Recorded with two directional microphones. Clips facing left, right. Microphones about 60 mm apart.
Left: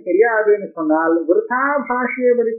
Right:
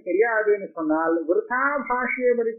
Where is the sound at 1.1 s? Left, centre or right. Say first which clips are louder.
Left 7 dB; left.